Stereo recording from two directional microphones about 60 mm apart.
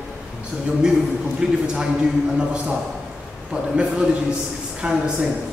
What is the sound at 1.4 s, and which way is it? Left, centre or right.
Speech, centre.